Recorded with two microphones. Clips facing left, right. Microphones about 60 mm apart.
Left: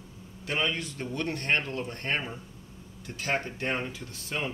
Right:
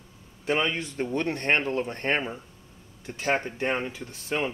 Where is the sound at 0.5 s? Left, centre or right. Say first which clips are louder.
Right 4 dB; right.